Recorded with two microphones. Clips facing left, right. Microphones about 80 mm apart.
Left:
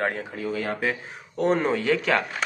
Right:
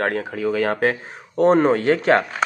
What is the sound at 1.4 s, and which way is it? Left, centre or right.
Speech, right.